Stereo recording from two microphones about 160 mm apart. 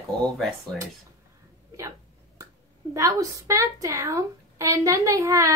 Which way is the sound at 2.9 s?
20° right (ahead or behind).